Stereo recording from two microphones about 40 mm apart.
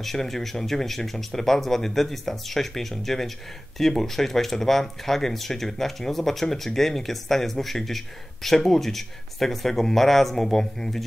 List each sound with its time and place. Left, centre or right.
0.0 s speech: centre